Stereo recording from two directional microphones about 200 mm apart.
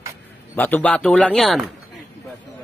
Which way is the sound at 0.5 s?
10° left (ahead or behind).